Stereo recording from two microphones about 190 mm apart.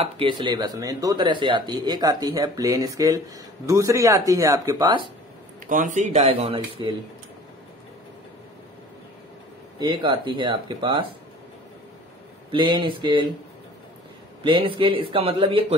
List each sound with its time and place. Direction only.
0.0 s speech: 25° right (ahead or behind)
5.7 s speech: 45° right (ahead or behind); by 7.0 s 25° right (ahead or behind)
9.8 s speech: 25° right (ahead or behind)
12.4 s speech: 25° right (ahead or behind)
14.4 s speech: 25° right (ahead or behind)